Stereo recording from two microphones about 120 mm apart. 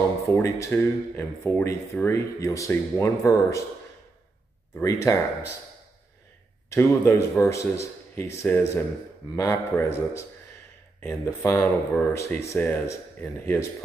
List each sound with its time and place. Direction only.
0.4 s speech: 25° left (ahead or behind)
4.8 s speech: 25° left (ahead or behind)
6.7 s speech: 25° left (ahead or behind)